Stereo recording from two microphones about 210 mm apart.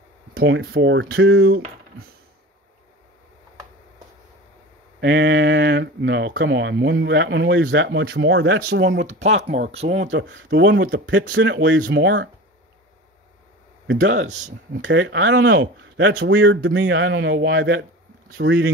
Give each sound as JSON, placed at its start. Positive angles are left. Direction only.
{"t": 0.6, "sound": "speech", "side_deg": -55}
{"t": 5.0, "sound": "speech", "side_deg": -55}
{"t": 9.0, "sound": "speech", "side_deg": -30}
{"t": 9.4, "sound": "speech", "side_deg": -50}
{"t": 10.1, "sound": "speech", "side_deg": -60}
{"t": 13.8, "sound": "speech", "side_deg": -65}
{"t": 14.2, "sound": "speech", "side_deg": -35}
{"t": 14.7, "sound": "speech", "side_deg": -60}